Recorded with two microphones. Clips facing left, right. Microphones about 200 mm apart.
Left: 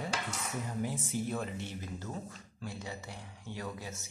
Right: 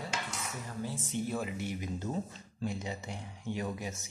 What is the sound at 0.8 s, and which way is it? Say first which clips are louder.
Speech: left 2 dB; 15° left (ahead or behind).